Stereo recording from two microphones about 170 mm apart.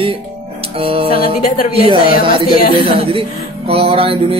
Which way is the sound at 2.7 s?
30° right (ahead or behind).